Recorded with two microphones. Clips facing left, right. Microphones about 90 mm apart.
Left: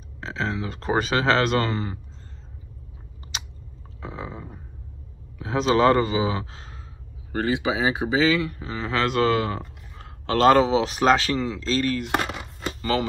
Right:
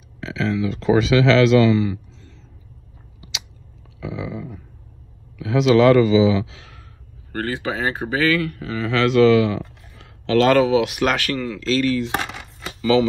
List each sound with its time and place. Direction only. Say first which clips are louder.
0.2 s speech: right 6 dB; 35° left (ahead or behind)
3.2 s chewing: even; 45° left (ahead or behind)
4.0 s a sound: right 6 dB; 40° left (ahead or behind)
5.4 s speech: right 5 dB; 35° left (ahead or behind)
7.3 s speech: left 1 dB; 15° left (ahead or behind); by 12.0 s 40° left (ahead or behind)